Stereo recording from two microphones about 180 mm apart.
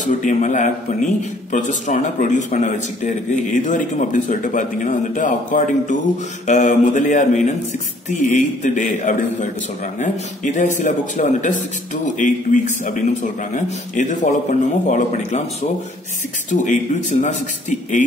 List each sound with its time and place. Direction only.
0.0 s a man's voice: 45° left (ahead or behind)
16.6 s a man's voice: 45° left (ahead or behind)